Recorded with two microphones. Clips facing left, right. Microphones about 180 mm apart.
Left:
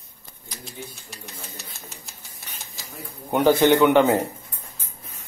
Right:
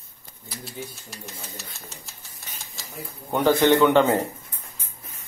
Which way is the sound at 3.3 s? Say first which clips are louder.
Left 2 dB; 10° left (ahead or behind).